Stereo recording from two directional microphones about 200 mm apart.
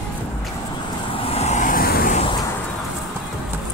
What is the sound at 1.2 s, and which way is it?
Vehicle, 30° left (ahead or behind).